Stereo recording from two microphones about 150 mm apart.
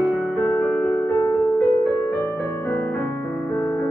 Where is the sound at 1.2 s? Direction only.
15° left (ahead or behind).